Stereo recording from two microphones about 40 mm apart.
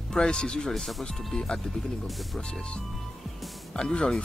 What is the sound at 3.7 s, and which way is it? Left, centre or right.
Speech, centre.